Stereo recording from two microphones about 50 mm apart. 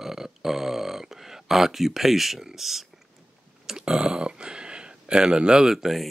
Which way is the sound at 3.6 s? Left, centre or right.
Centre.